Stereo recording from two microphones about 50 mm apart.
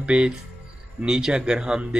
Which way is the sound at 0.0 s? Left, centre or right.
Right.